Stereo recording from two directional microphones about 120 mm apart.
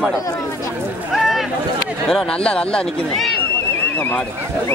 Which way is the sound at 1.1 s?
Centre (ahead or behind).